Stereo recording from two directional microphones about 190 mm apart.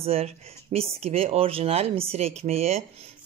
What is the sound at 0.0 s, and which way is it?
Speech, 30° right (ahead or behind).